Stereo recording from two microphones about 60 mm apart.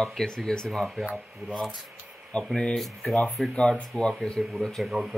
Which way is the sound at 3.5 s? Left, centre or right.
Centre.